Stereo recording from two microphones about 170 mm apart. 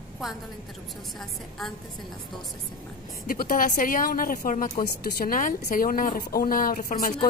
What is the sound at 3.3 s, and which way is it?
Speech, 55° left (ahead or behind).